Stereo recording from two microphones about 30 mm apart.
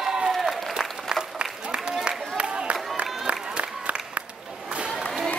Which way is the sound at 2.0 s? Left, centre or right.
Right.